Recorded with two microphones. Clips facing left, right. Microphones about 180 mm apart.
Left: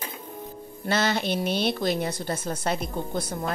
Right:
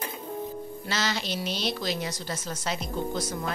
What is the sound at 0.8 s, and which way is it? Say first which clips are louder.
Speech: left 7 dB; 55° left (ahead or behind).